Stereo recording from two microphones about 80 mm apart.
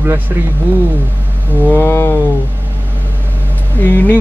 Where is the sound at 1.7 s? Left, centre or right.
Left.